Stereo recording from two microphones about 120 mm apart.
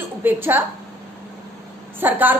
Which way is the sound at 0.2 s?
15° right (ahead or behind).